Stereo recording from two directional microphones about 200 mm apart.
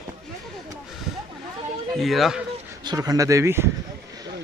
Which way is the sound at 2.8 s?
20° right (ahead or behind).